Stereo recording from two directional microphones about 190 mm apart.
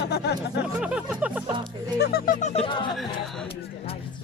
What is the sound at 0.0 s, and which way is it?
Music, 60° left (ahead or behind).